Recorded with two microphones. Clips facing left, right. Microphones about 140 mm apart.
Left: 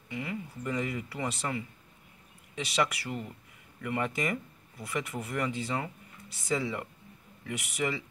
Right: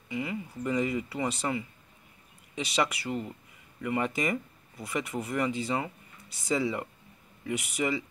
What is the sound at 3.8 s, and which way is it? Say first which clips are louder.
Speech: right 2 dB; 5° right (ahead or behind).